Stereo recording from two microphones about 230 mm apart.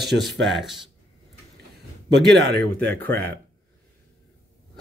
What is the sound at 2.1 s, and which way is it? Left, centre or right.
Speech, right.